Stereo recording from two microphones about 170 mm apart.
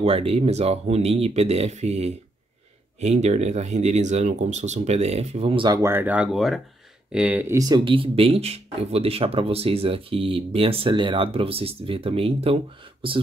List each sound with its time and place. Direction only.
0.0 s speech: 35° right (ahead or behind)
5.8 s speech: 15° right (ahead or behind); by 13.2 s 30° right (ahead or behind)